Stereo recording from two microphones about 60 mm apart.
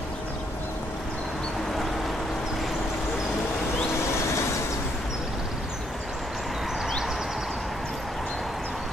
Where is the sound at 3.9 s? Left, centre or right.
Left.